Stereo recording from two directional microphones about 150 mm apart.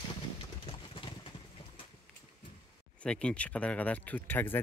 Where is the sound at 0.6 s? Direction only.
35° left (ahead or behind).